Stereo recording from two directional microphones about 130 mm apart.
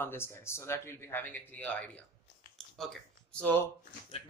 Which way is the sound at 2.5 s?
5° left (ahead or behind).